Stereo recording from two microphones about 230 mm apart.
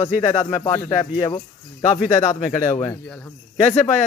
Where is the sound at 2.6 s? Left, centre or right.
Centre.